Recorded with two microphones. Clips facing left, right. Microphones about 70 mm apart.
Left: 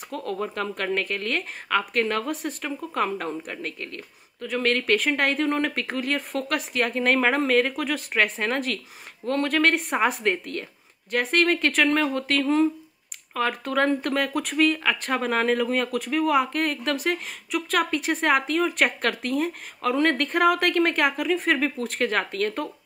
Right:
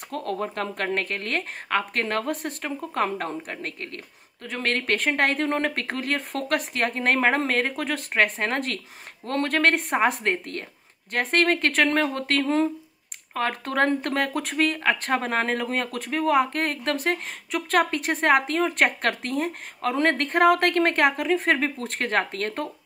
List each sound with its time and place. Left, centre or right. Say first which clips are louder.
0.1 s speech: right 1 dB; right